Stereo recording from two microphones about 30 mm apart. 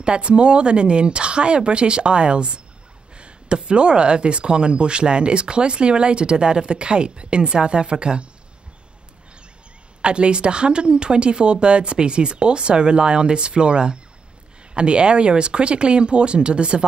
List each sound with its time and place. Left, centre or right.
0.0 s speech: right
10.0 s speech: right